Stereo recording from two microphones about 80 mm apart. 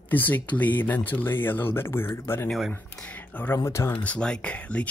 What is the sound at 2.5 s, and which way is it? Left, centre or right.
Speech, centre.